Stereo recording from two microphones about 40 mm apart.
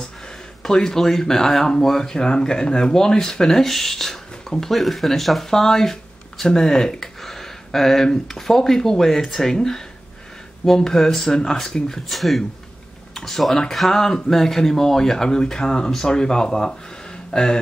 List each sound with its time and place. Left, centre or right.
0.6 s speech: centre
7.0 s speech: centre